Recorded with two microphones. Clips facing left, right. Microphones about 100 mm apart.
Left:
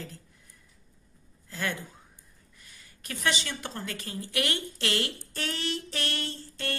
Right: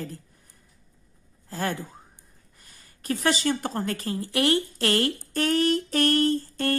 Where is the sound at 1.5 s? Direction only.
40° right (ahead or behind).